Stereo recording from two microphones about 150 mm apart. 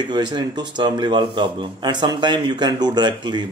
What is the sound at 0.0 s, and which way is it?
Speech, 30° right (ahead or behind).